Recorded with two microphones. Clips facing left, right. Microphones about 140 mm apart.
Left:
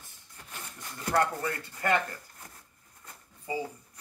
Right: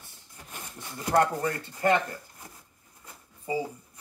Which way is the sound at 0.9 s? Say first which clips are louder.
Right 4 dB; 15° right (ahead or behind).